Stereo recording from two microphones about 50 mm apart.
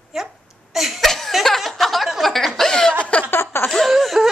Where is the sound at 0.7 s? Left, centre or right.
Centre.